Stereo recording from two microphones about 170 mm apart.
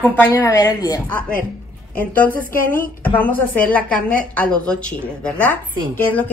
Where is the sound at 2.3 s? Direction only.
10° left (ahead or behind).